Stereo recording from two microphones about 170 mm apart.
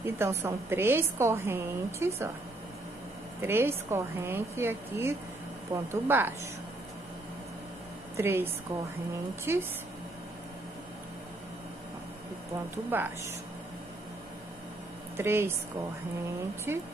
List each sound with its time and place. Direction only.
0.0 s a woman's voice: 15° right (ahead or behind)
3.3 s a woman's voice: 15° right (ahead or behind)
8.2 s a woman's voice: 15° right (ahead or behind)
12.7 s a woman's voice: 10° right (ahead or behind)
15.1 s a woman's voice: 15° right (ahead or behind)
16.7 s a woman's voice: 15° right (ahead or behind)